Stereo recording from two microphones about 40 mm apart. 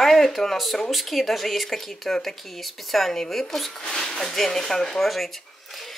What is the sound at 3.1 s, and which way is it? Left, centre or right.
Speech, centre.